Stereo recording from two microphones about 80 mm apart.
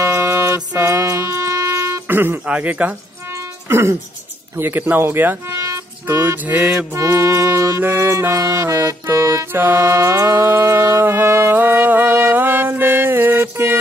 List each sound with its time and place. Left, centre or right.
0.0 s music: right
0.9 s music: right
2.4 s a man's voice: centre
3.6 s speech: right
6.9 s music: right